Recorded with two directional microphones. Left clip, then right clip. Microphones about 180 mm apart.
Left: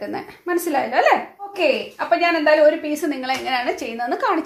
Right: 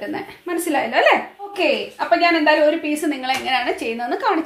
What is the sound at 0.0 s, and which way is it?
A woman's voice, 45° left (ahead or behind).